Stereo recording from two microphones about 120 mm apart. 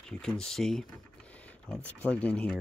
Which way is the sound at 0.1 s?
5° left (ahead or behind).